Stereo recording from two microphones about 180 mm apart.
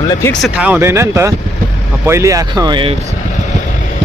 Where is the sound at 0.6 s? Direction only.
10° right (ahead or behind); by 3.0 s 25° right (ahead or behind).